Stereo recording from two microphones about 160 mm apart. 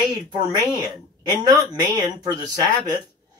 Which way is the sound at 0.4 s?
25° right (ahead or behind).